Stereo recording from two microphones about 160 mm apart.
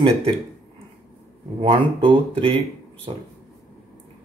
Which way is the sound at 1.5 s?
35° right (ahead or behind).